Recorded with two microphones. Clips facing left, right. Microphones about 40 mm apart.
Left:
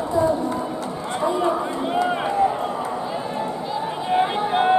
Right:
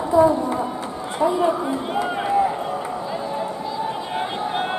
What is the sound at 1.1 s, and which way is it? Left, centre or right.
Run, centre.